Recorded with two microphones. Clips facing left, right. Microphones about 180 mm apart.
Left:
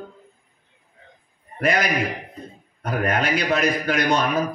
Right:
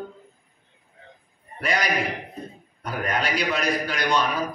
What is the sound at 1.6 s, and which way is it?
A man's voice, 50° left (ahead or behind).